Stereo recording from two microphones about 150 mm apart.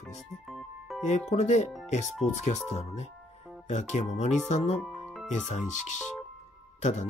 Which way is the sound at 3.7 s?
50° left (ahead or behind).